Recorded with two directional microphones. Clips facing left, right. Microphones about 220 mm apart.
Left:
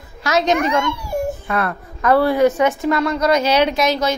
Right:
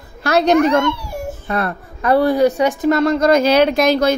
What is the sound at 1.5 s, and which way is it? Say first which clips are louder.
A child's voice: right 1 dB; 35° right (ahead or behind).